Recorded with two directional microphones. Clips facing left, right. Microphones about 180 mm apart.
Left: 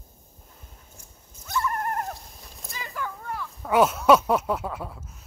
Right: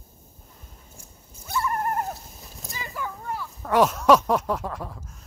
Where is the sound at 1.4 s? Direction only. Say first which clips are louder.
Right 1 dB; 10° right (ahead or behind).